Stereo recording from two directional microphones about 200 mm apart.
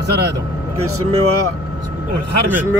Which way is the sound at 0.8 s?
90° right.